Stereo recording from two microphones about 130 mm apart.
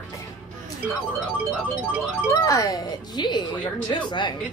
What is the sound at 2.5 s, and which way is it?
Speech, 30° left (ahead or behind).